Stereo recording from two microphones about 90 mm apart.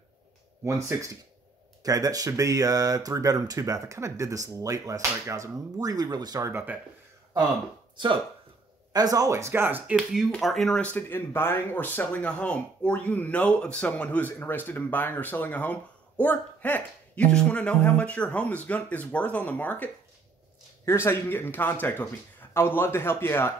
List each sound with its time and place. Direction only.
0.7 s speech: 35° right (ahead or behind)
8.9 s speech: 45° right (ahead or behind); by 9.9 s 20° right (ahead or behind)
9.9 s speech: 5° right (ahead or behind)
10.8 s speech: 15° left (ahead or behind)